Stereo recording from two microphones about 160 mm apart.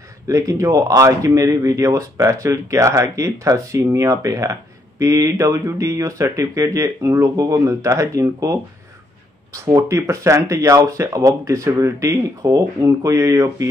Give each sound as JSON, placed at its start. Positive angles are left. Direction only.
{"t": 0.3, "sound": "speech", "side_deg": -20}